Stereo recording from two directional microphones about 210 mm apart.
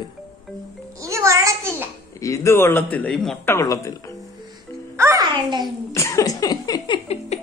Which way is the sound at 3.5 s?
15° left (ahead or behind).